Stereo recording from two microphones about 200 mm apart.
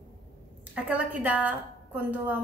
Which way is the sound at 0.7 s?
5° right (ahead or behind).